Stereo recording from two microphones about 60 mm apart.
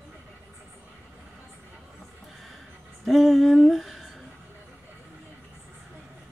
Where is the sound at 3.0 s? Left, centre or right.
Centre.